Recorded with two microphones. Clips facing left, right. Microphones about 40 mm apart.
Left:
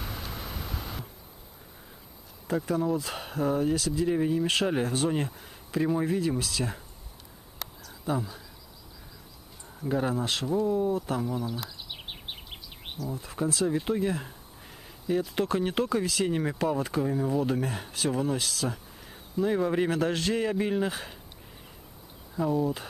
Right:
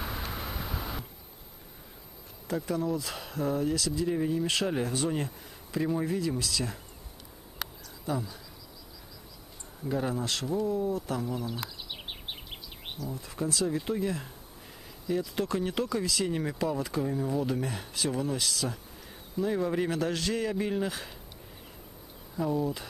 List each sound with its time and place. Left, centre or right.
0.0 s vehicle: centre
2.4 s speech: centre
8.0 s speech: centre
9.8 s speech: centre
10.9 s bird: centre
12.9 s speech: centre
13.3 s speech: centre
22.3 s speech: centre